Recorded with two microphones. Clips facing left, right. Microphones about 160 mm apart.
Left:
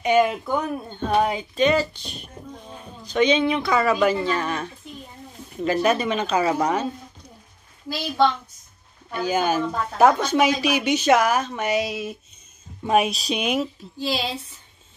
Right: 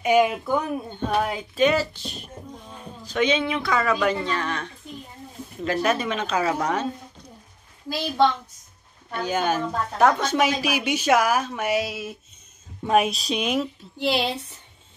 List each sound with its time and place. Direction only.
0.0 s a woman's voice: 5° right (ahead or behind)
9.1 s a woman's voice: 5° left (ahead or behind)
13.9 s speech: 65° right (ahead or behind)